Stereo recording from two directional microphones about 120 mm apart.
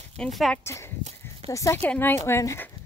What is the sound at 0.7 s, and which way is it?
Speech, 20° left (ahead or behind).